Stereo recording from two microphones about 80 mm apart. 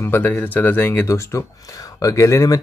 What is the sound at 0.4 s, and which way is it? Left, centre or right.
Speech, left.